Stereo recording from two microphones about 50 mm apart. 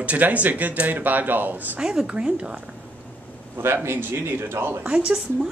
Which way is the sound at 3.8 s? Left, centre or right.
Right.